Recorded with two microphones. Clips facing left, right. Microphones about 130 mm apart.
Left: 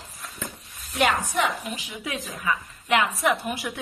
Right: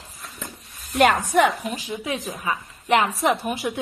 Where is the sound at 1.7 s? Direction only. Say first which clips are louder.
Right 5 dB; 30° right (ahead or behind).